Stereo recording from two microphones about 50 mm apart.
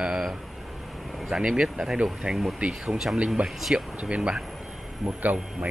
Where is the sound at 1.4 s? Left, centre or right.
Right.